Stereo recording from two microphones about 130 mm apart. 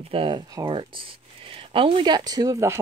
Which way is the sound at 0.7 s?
40° right (ahead or behind).